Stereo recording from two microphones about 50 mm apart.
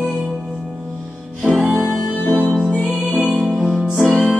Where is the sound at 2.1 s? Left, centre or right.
Left.